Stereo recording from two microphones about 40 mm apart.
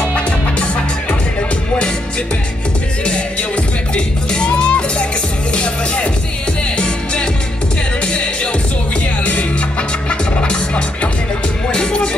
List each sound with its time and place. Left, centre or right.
3.1 s music: left
8.0 s music: left
9.2 s music: left